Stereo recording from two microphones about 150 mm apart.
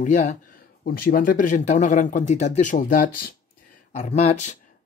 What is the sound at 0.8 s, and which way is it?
Speech, 70° left (ahead or behind).